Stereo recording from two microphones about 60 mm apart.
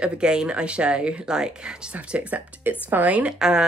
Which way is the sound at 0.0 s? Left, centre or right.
Centre.